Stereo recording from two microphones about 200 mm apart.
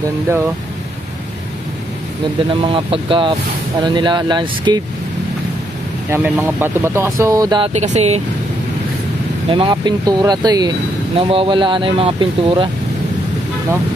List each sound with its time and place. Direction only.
2.6 s speech: 25° right (ahead or behind)
6.0 s speech: 10° right (ahead or behind)
7.7 s speech: 35° right (ahead or behind)
9.5 s speech: 25° right (ahead or behind)